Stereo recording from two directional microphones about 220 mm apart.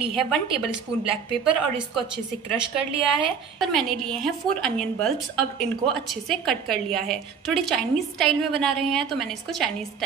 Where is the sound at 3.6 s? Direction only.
Centre (ahead or behind).